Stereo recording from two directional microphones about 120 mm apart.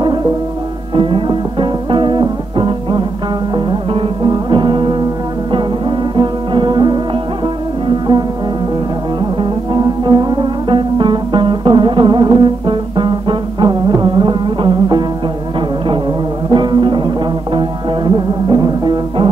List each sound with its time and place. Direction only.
0.9 s music: 45° right (ahead or behind)
9.4 s music: 35° right (ahead or behind)
16.4 s music: 40° right (ahead or behind)